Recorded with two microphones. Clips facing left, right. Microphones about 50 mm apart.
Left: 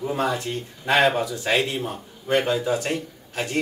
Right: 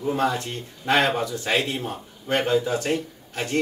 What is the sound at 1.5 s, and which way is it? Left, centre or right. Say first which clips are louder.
Speech: left 2 dB; centre.